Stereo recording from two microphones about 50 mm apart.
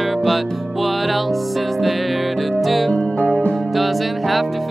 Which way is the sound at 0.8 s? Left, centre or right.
Centre.